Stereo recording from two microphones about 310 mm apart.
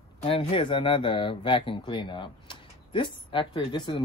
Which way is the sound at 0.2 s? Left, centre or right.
Centre.